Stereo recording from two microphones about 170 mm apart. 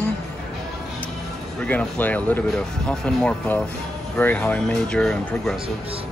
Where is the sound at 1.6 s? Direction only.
10° left (ahead or behind).